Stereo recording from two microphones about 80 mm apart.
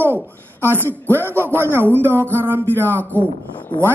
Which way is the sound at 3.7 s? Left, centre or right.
Left.